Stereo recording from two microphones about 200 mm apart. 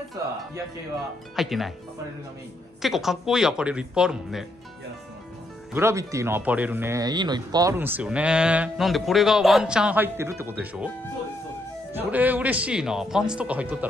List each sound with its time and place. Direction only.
1.3 s speech: centre (ahead or behind)
2.8 s speech: centre (ahead or behind)
5.7 s speech: 15° right (ahead or behind)
11.9 s speech: 10° right (ahead or behind)